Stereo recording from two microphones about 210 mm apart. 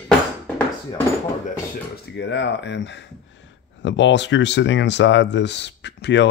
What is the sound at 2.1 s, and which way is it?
Speech, 55° left (ahead or behind).